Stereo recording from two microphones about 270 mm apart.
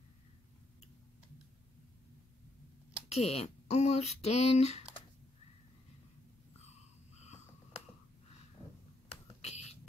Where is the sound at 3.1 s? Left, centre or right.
Left.